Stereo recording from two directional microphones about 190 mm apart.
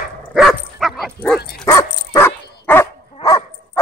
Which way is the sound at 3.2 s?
30° left (ahead or behind).